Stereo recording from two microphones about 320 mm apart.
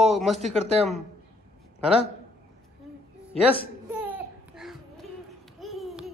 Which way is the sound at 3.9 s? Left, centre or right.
Centre.